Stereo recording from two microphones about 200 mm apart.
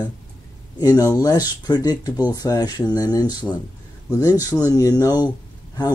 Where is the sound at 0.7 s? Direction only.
20° left (ahead or behind).